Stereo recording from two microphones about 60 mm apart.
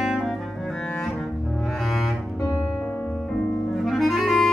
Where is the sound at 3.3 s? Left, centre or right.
Centre.